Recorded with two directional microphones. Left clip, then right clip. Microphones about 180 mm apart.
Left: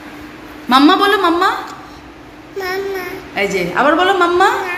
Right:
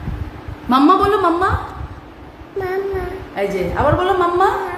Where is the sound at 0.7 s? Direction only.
5° right (ahead or behind).